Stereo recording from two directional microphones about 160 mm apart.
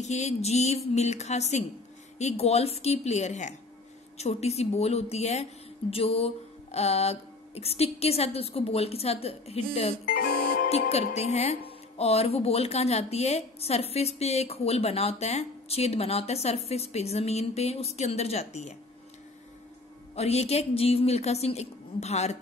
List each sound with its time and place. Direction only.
0.0 s speech: 45° left (ahead or behind)
10.0 s music: 60° left (ahead or behind)
10.7 s speech: 40° left (ahead or behind)
20.2 s speech: 40° left (ahead or behind)